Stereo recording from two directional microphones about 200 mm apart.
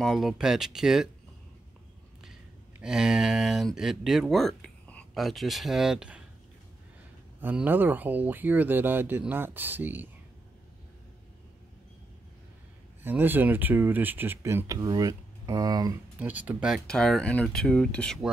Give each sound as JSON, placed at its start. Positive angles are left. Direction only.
{"t": 0.0, "sound": "speech", "side_deg": 0}
{"t": 2.8, "sound": "speech", "side_deg": -5}
{"t": 7.4, "sound": "speech", "side_deg": -10}
{"t": 13.0, "sound": "speech", "side_deg": -10}
{"t": 16.2, "sound": "speech", "side_deg": -10}